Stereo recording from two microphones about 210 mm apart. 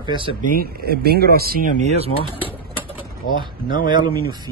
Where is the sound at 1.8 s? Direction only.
30° right (ahead or behind).